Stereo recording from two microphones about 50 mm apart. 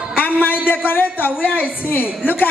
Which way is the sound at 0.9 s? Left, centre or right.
Left.